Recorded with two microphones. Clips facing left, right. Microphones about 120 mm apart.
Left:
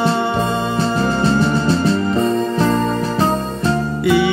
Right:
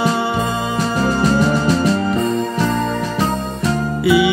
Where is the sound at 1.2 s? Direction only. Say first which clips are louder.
Right 2 dB; 30° left (ahead or behind).